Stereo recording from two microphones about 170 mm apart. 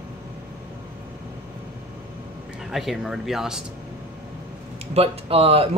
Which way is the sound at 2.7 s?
Centre (ahead or behind).